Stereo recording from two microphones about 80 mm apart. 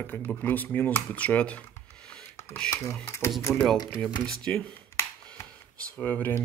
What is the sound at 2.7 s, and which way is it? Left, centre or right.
A man's voice, left.